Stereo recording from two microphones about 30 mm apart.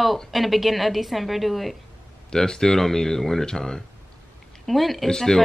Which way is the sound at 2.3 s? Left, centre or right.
Left.